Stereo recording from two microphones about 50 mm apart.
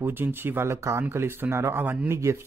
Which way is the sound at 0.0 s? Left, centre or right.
Right.